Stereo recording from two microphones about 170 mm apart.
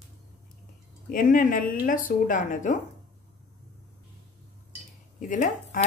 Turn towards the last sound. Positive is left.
turn(degrees=50)  # may be behind; listen again after turning